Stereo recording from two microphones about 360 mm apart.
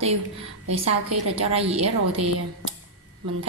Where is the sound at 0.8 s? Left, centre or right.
Right.